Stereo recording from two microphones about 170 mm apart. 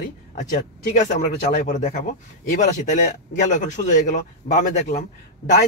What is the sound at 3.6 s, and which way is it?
Speech, 45° left (ahead or behind).